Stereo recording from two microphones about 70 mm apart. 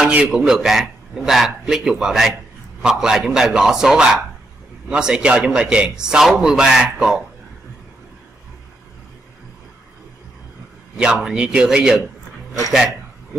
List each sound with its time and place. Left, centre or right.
0.0 s a man's voice: centre
11.0 s a man's voice: centre